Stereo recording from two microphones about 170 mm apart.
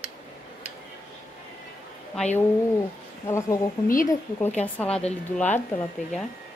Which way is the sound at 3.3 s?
15° left (ahead or behind).